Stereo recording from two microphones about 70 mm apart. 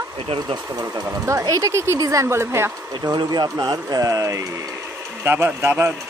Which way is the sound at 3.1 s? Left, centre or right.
Right.